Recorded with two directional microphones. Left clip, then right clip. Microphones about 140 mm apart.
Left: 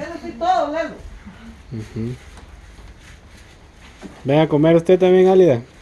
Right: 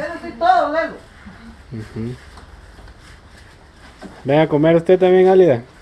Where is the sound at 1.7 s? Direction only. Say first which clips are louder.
Even; 20° left (ahead or behind).